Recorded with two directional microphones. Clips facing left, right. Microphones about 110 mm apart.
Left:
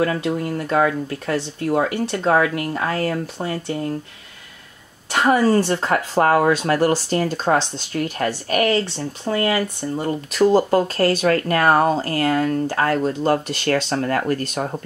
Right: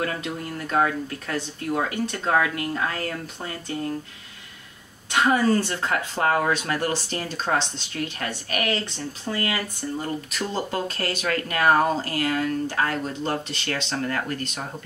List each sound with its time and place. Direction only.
0.0 s speech: 40° left (ahead or behind)
5.1 s speech: 35° left (ahead or behind)